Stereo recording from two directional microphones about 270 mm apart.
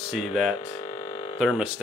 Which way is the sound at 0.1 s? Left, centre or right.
Centre.